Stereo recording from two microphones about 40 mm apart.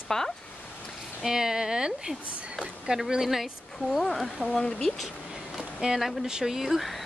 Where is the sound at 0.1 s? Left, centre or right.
Centre.